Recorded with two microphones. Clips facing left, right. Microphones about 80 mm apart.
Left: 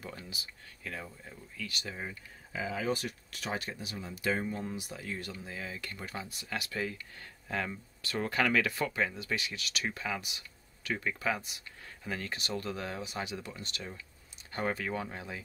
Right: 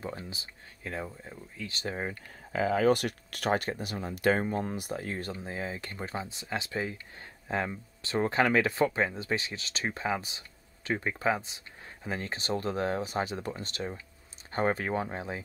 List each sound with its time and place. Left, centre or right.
0.0 s speech: right
1.9 s speech: right